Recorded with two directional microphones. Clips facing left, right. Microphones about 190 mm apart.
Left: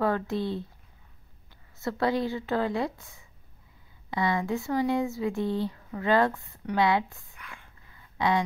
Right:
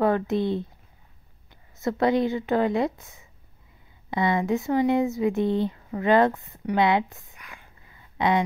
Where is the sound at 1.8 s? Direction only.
20° right (ahead or behind).